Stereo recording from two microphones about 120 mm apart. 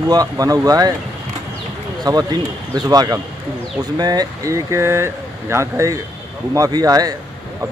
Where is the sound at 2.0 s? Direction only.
35° right (ahead or behind).